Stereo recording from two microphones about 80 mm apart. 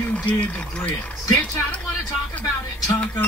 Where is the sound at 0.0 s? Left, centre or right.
Centre.